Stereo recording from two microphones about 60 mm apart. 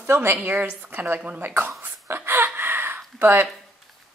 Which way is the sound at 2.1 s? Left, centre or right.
Right.